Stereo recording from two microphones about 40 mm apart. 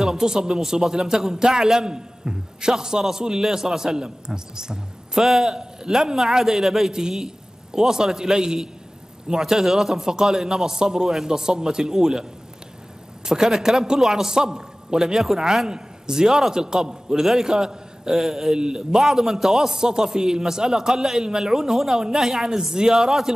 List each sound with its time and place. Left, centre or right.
0.0 s a man's voice: centre
6.9 s a man's voice: centre